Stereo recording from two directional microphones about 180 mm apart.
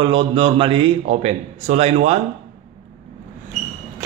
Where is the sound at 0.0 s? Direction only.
30° right (ahead or behind).